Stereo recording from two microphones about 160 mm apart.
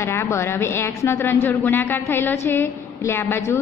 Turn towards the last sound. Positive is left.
turn(degrees=15)  # may be behind; listen again after turning